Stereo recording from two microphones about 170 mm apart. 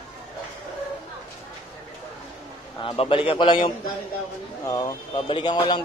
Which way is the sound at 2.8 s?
30° left (ahead or behind).